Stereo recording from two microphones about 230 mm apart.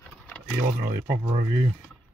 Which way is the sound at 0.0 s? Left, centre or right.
Centre.